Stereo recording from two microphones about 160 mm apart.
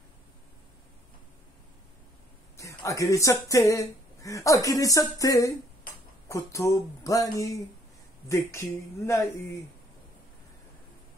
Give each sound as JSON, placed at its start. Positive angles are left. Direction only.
{"t": 2.8, "sound": "speech", "side_deg": 20}